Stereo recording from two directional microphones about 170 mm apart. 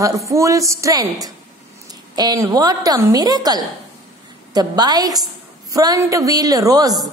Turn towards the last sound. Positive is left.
turn(degrees=-20)  # may be behind; listen again after turning